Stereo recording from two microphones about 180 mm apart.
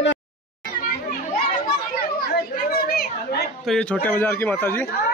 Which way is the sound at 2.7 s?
55° left (ahead or behind).